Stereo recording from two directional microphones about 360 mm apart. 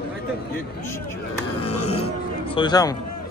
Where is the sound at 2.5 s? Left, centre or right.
Centre.